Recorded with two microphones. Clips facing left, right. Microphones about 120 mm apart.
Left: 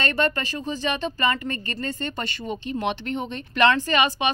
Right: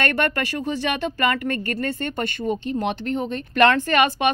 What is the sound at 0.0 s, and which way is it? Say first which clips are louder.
Speech: right 2 dB; 65° right (ahead or behind).